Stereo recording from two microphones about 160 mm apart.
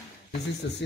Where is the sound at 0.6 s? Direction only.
90° left.